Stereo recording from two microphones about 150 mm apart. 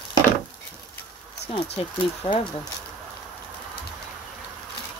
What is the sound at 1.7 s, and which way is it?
Speech, 35° left (ahead or behind).